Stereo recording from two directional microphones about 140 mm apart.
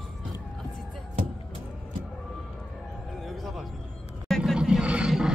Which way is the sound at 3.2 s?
Centre (ahead or behind).